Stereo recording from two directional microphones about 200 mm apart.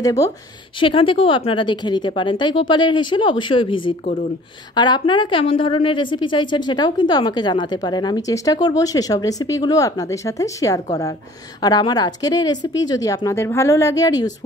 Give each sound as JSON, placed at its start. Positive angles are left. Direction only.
{"t": 0.0, "sound": "a woman's voice", "side_deg": 15}